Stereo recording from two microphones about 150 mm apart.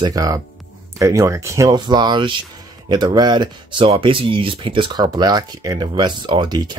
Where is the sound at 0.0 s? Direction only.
25° right (ahead or behind).